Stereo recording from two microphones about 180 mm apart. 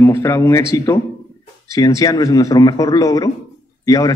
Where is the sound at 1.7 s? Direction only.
20° left (ahead or behind).